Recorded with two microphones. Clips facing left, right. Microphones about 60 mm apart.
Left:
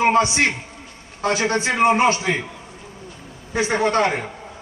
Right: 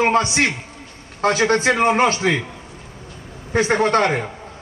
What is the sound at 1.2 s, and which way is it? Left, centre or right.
Speech, right.